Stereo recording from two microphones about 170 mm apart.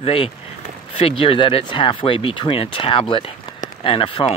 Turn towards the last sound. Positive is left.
turn(degrees=30)  # may be behind; listen again after turning